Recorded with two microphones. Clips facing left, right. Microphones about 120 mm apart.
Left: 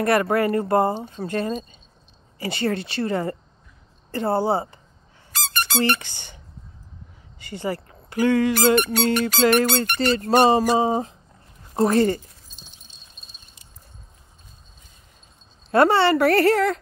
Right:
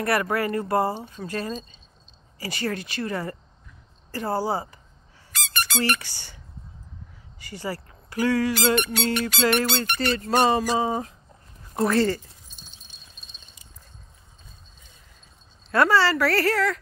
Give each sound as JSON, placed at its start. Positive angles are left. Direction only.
{"t": 0.0, "sound": "a woman's voice", "side_deg": 25}
{"t": 1.5, "sound": "keys jangling", "side_deg": -30}
{"t": 2.3, "sound": "a woman's voice", "side_deg": 25}
{"t": 5.3, "sound": "squeak", "side_deg": 35}
{"t": 7.3, "sound": "speech", "side_deg": 25}
{"t": 8.5, "sound": "speech", "side_deg": 40}
{"t": 9.9, "sound": "a woman's voice", "side_deg": 30}
{"t": 15.7, "sound": "a woman's voice", "side_deg": 25}